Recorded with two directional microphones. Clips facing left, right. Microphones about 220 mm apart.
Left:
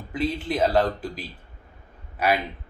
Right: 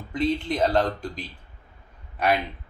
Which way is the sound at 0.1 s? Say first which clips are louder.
Right 1 dB; 5° left (ahead or behind).